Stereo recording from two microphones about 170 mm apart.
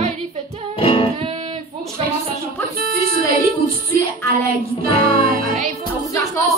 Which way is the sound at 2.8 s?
60° right (ahead or behind).